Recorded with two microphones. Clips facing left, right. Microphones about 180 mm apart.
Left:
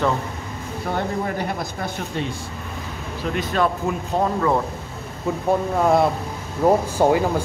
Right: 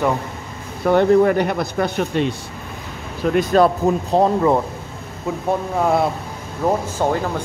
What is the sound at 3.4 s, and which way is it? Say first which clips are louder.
Speech: right 7 dB; 40° right (ahead or behind).